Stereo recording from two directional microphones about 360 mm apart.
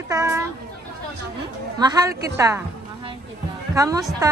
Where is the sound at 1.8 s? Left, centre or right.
Centre.